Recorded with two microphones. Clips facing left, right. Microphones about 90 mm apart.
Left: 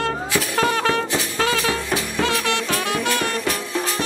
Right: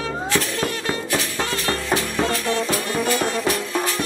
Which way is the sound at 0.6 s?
80° left.